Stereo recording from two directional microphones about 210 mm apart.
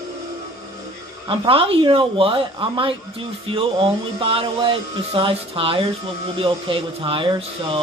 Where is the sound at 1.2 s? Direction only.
25° right (ahead or behind).